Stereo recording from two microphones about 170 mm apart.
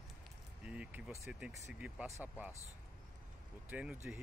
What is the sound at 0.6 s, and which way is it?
Speech, 5° right (ahead or behind).